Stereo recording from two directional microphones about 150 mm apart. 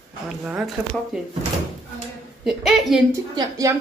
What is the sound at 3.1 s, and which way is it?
Speech, 20° right (ahead or behind).